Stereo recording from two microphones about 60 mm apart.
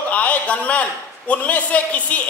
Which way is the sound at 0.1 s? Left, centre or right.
Left.